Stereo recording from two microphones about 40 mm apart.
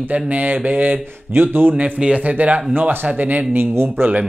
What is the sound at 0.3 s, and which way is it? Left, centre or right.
Speech, right.